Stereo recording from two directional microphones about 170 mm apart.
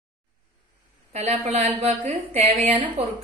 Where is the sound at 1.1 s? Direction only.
40° right (ahead or behind).